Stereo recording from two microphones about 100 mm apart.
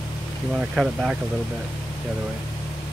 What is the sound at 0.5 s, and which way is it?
Speech, 5° right (ahead or behind).